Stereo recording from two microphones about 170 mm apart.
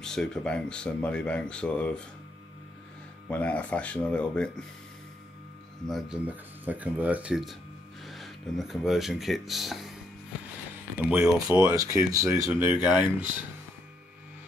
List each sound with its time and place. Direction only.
0.0 s speech: 5° left (ahead or behind)
3.3 s speech: 10° left (ahead or behind)
5.9 s speech: centre (ahead or behind)
11.0 s speech: 10° right (ahead or behind)
11.7 s speech: 20° right (ahead or behind)
12.8 s speech: 10° right (ahead or behind)